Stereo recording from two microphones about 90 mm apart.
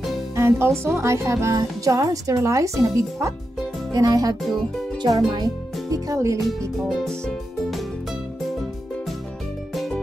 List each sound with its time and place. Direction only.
0.4 s speech: 30° right (ahead or behind)
4.4 s speech: centre (ahead or behind)
5.3 s speech: 45° right (ahead or behind)
6.9 s music: 5° left (ahead or behind)